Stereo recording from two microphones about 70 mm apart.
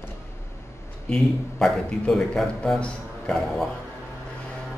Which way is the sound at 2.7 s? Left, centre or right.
Centre.